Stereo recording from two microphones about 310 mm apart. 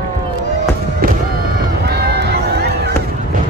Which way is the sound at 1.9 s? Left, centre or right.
Right.